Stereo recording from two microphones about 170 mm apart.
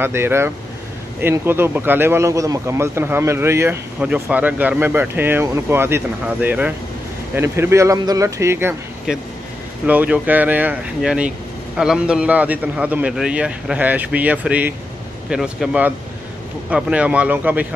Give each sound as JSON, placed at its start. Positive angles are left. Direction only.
{"t": 0.0, "sound": "speech", "side_deg": -15}
{"t": 9.8, "sound": "speech", "side_deg": -10}